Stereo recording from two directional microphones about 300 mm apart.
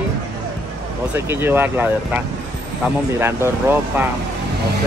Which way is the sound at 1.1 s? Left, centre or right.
Centre.